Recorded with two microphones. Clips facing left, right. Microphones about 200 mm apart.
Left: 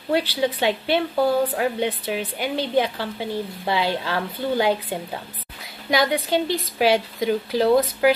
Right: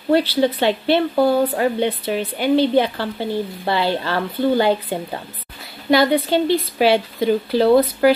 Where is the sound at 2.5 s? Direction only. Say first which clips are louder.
Right 7 dB; 30° right (ahead or behind).